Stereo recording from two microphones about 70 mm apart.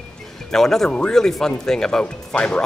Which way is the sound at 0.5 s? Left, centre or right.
Centre.